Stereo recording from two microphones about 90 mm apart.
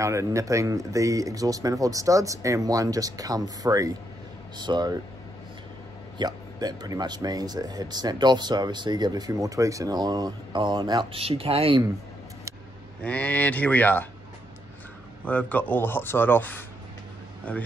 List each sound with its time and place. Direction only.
0.0 s speech: 35° right (ahead or behind); by 4.9 s 50° right (ahead or behind)
6.1 s speech: 50° right (ahead or behind); by 11.8 s 90° right
13.0 s speech: 15° left (ahead or behind)
15.2 s speech: 15° left (ahead or behind)